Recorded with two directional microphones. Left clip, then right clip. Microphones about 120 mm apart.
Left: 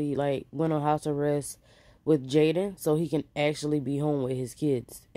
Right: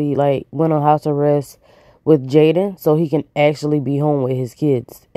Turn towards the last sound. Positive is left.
turn(degrees=-40)  # may be behind; listen again after turning